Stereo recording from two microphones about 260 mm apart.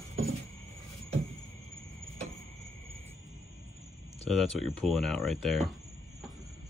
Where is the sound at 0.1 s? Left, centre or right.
Right.